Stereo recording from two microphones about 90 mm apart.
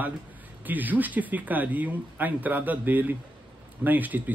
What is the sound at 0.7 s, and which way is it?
Speech, 20° right (ahead or behind).